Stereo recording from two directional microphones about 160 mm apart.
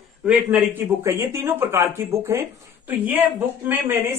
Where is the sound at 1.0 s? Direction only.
15° right (ahead or behind).